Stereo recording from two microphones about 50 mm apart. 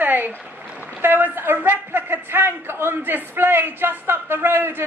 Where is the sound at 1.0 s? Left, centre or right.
Right.